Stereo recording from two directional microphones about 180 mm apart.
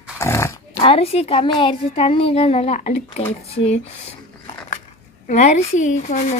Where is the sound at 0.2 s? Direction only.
15° left (ahead or behind).